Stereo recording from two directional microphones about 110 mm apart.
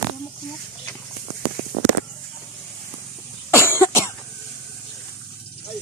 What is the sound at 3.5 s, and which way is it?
Cough, 20° left (ahead or behind).